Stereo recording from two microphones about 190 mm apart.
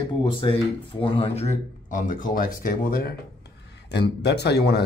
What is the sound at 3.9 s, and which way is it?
Speech, 60° left (ahead or behind).